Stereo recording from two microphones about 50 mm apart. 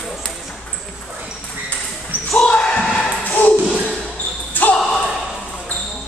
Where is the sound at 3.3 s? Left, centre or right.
Left.